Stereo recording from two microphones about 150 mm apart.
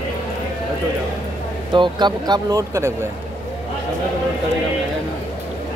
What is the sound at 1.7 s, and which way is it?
Speech, 30° right (ahead or behind).